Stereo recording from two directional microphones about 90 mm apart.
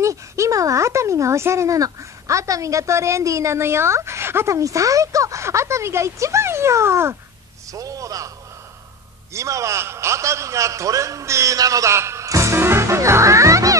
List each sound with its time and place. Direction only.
0.0 s speech: 35° right (ahead or behind)
7.7 s a man's voice: 40° right (ahead or behind)
9.3 s a man's voice: 35° right (ahead or behind)